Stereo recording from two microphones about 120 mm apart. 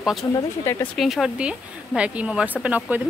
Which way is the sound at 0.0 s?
Centre (ahead or behind).